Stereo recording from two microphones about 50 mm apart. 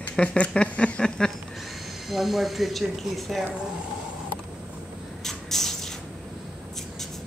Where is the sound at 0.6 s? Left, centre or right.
Left.